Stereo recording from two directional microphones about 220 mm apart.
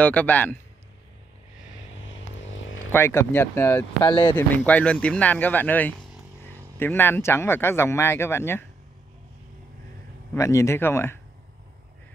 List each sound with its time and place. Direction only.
0.0 s speech: 5° left (ahead or behind)
2.0 s vehicle: 60° left (ahead or behind)
2.9 s speech: 10° left (ahead or behind)
4.1 s speech: 20° left (ahead or behind)
4.4 s speech: 5° left (ahead or behind)
10.3 s speech: 15° left (ahead or behind)